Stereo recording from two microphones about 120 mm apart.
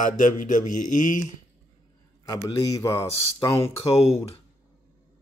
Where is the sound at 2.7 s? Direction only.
25° left (ahead or behind).